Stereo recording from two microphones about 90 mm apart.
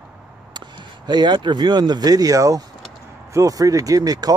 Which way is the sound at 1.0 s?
55° right (ahead or behind).